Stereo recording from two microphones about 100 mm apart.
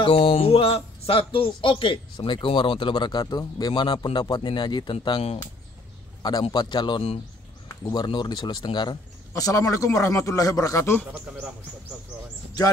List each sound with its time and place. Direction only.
0.0 s speech: 65° left (ahead or behind)
6.5 s a man's voice: 45° left (ahead or behind)
7.8 s speech: 45° left (ahead or behind); by 11.0 s 30° left (ahead or behind)